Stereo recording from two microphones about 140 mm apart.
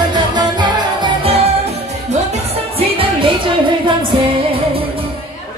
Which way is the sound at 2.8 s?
40° right (ahead or behind).